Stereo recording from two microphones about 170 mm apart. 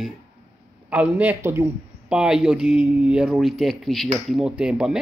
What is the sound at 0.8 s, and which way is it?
Speech, 10° right (ahead or behind).